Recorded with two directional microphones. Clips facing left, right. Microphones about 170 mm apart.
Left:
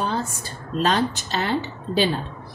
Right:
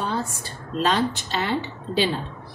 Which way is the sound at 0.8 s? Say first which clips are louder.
Left 1 dB; 40° left (ahead or behind).